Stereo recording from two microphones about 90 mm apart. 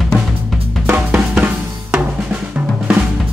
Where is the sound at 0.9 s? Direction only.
20° right (ahead or behind).